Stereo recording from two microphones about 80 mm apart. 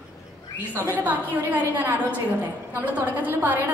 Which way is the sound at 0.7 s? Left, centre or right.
Right.